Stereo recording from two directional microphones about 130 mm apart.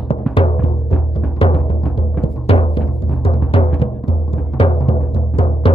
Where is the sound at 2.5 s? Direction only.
45° left (ahead or behind).